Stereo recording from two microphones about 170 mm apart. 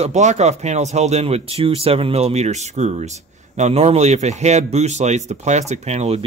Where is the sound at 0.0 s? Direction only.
45° right (ahead or behind).